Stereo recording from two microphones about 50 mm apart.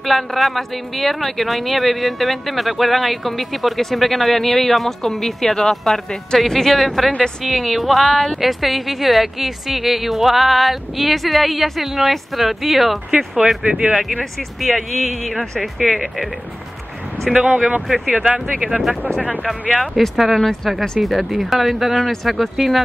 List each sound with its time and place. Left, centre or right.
0.0 s speech: centre
13.7 s speech: centre
14.6 s speech: centre
17.3 s speech: centre
19.7 s speech: centre